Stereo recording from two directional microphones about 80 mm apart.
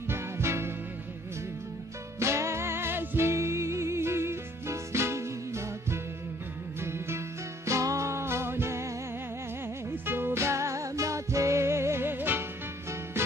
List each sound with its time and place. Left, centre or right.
0.1 s music: right
2.1 s music: right
9.8 s music: right